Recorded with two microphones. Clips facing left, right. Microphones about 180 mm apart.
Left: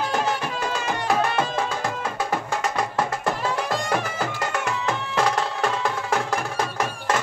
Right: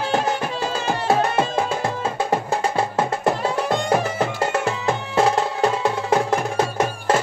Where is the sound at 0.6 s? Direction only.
30° right (ahead or behind).